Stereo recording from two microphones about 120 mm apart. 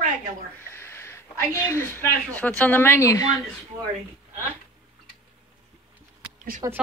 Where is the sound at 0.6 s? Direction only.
20° left (ahead or behind).